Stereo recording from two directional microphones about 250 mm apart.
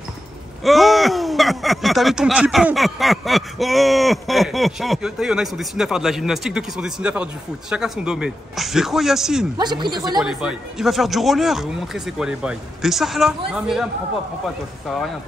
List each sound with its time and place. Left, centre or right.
0.7 s speech: centre
9.6 s speech: centre
10.2 s speech: centre